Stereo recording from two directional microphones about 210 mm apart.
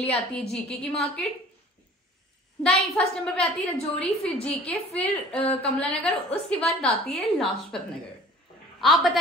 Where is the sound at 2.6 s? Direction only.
5° left (ahead or behind).